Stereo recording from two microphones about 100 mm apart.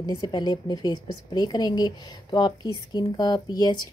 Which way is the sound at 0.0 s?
45° left (ahead or behind).